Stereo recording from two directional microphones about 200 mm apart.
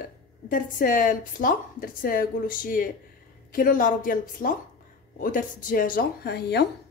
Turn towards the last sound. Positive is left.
turn(degrees=55)  # may be behind; listen again after turning